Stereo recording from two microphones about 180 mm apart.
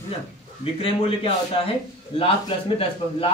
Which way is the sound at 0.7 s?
30° left (ahead or behind).